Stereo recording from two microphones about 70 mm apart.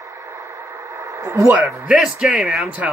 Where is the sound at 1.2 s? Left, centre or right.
Right.